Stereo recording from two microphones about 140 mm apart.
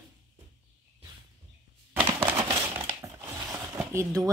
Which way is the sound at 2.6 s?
20° right (ahead or behind).